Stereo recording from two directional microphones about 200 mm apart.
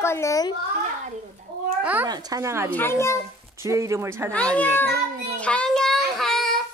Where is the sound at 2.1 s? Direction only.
15° right (ahead or behind).